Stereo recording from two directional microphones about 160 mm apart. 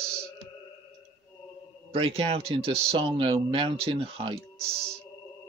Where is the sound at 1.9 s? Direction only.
35° right (ahead or behind).